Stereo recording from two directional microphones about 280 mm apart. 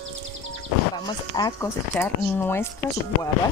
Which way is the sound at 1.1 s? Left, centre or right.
Centre.